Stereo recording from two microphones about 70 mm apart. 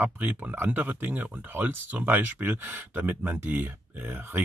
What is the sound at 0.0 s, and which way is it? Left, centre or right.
Speech, right.